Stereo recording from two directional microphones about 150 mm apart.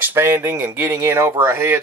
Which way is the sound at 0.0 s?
15° right (ahead or behind).